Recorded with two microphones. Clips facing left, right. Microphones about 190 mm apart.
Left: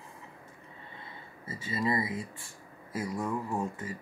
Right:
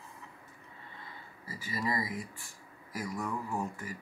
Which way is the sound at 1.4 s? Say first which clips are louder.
Left 4 dB; 25° left (ahead or behind).